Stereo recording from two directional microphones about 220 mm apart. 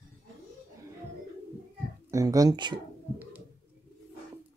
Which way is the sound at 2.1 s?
15° right (ahead or behind).